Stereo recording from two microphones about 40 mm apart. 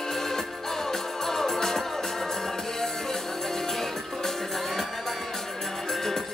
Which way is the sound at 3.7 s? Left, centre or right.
Centre.